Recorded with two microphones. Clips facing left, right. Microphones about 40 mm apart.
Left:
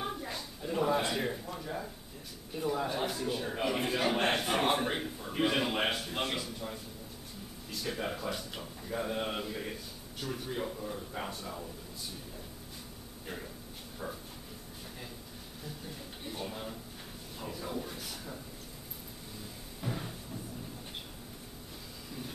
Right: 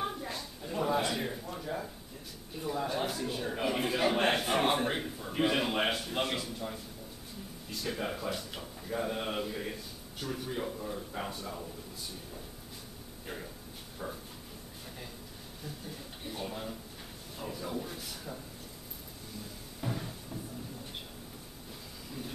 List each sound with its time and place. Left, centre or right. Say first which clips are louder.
0.0 s a sound: right 1 dB; centre
2.5 s a man's voice: left 1 dB; centre
13.3 s a man's voice: even; centre
16.3 s a man's voice: right 1 dB; centre
19.8 s music: right 1 dB; centre